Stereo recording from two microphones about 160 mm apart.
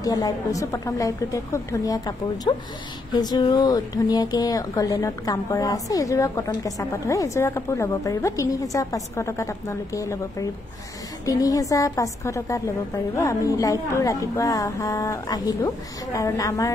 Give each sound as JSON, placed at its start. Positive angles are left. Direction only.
{"t": 0.0, "sound": "speech", "side_deg": 25}
{"t": 11.2, "sound": "speech", "side_deg": 20}